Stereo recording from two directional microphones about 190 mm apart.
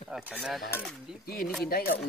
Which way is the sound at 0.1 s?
Centre (ahead or behind).